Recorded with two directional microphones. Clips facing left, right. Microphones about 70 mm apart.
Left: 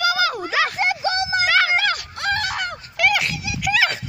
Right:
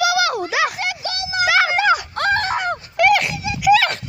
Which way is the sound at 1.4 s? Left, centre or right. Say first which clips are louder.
Right 5 dB; centre.